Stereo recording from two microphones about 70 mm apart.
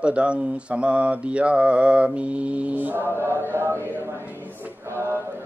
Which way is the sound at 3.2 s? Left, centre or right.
Right.